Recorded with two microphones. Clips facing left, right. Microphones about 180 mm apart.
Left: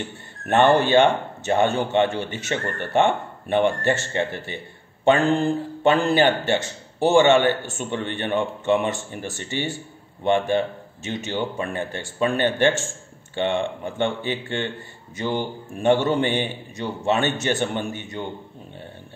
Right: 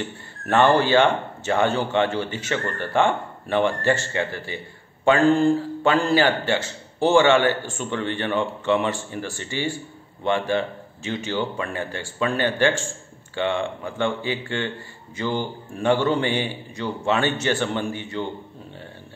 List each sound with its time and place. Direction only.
0.5 s a man's voice: 20° left (ahead or behind)